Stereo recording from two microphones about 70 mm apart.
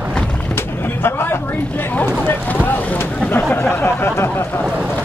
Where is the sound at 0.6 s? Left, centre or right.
Left.